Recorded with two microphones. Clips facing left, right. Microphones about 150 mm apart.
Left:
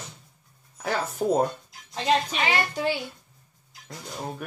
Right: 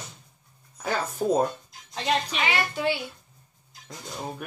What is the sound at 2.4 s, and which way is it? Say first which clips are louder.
Speech: left 1 dB; 40° left (ahead or behind).